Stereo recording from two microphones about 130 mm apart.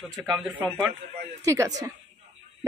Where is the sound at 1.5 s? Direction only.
25° right (ahead or behind).